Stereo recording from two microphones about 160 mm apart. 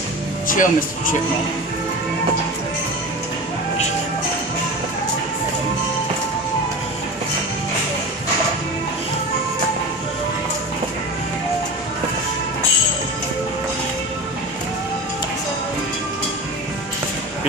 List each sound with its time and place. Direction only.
0.5 s speech: 60° left (ahead or behind)